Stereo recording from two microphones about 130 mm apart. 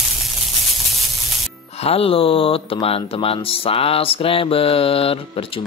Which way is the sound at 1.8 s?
45° left (ahead or behind).